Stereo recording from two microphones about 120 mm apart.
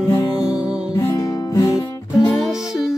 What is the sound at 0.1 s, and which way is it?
Music, 25° left (ahead or behind).